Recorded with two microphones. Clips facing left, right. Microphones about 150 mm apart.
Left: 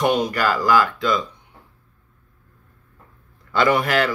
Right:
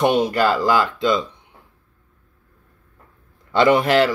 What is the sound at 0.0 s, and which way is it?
Speech, 25° right (ahead or behind).